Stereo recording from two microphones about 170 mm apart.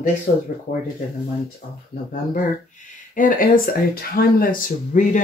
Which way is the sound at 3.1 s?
55° left (ahead or behind).